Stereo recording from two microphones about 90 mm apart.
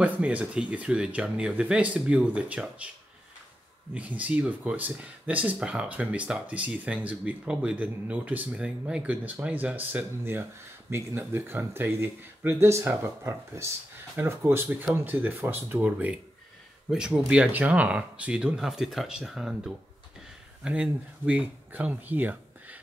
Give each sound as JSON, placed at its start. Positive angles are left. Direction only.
{"t": 0.0, "sound": "speech", "side_deg": -15}
{"t": 3.9, "sound": "speech", "side_deg": -15}
{"t": 16.9, "sound": "speech", "side_deg": -10}